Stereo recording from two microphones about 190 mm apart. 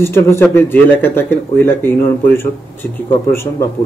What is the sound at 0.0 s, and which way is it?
Speech, 15° left (ahead or behind).